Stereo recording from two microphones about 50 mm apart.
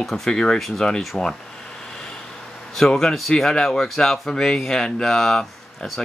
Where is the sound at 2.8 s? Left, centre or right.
Centre.